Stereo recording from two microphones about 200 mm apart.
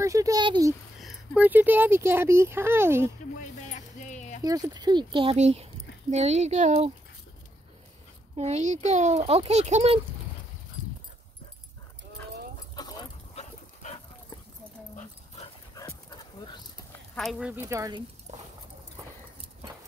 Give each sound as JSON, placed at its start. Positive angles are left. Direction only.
{"t": 0.0, "sound": "speech", "side_deg": -15}
{"t": 1.0, "sound": "speech", "side_deg": -5}
{"t": 3.3, "sound": "music", "side_deg": 35}
{"t": 4.4, "sound": "speech", "side_deg": -20}
{"t": 8.4, "sound": "speech", "side_deg": -35}
{"t": 12.7, "sound": "dog", "side_deg": 20}
{"t": 13.3, "sound": "dog", "side_deg": 30}
{"t": 17.1, "sound": "speech", "side_deg": 0}